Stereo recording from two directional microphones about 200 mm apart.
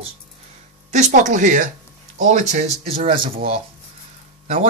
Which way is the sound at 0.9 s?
35° right (ahead or behind).